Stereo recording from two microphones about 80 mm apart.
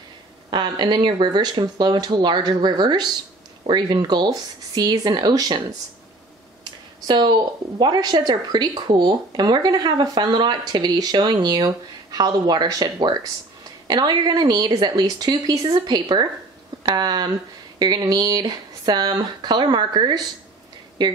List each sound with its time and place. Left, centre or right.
0.5 s speech: right
7.1 s speech: right
21.0 s speech: right